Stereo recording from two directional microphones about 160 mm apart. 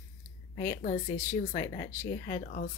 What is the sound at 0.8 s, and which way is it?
Speech, 55° left (ahead or behind).